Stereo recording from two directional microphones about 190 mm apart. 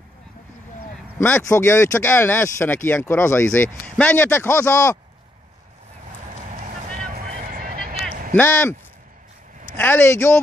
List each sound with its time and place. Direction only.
1.2 s speech: 10° left (ahead or behind)
7.1 s vehicle: 50° right (ahead or behind)
8.4 s speech: 10° left (ahead or behind)
9.8 s speech: 10° left (ahead or behind)